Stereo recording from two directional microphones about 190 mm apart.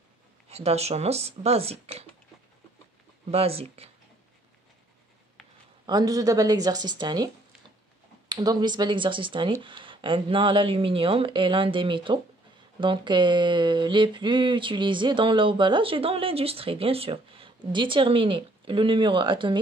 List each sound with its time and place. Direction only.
0.5 s speech: 35° right (ahead or behind)
3.3 s speech: 30° right (ahead or behind)
5.9 s speech: 20° right (ahead or behind)
8.3 s speech: 20° right (ahead or behind)